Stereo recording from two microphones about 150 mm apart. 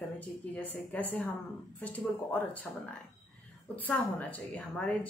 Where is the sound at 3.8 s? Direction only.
10° left (ahead or behind).